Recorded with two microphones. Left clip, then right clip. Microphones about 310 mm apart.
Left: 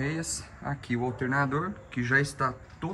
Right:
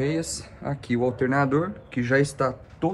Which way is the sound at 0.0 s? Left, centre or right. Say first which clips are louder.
Right 6 dB; right.